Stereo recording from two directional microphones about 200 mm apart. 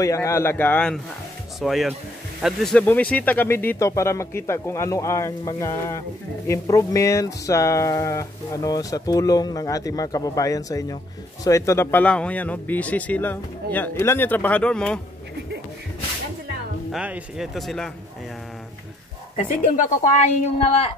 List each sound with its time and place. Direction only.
0.0 s speech: 15° left (ahead or behind)
16.9 s speech: 5° right (ahead or behind)
19.3 s speech: 40° left (ahead or behind)